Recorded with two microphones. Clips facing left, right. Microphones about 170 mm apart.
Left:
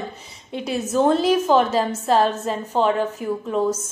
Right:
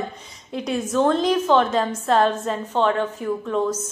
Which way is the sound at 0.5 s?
Centre (ahead or behind).